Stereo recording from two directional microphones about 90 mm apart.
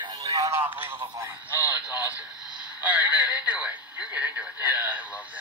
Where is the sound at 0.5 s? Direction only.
25° right (ahead or behind).